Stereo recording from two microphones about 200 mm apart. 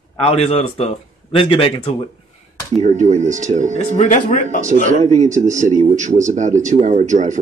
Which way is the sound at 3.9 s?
40° left (ahead or behind).